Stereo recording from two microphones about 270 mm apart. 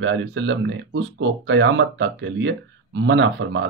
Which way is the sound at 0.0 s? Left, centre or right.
Right.